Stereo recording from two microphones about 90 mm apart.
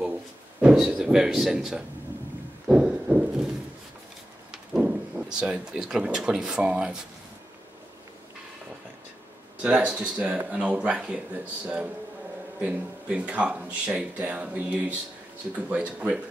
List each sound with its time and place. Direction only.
0.6 s speech: 10° right (ahead or behind)
2.7 s a sound: 10° right (ahead or behind)
4.5 s speech: 10° right (ahead or behind)
9.6 s speech: 10° right (ahead or behind)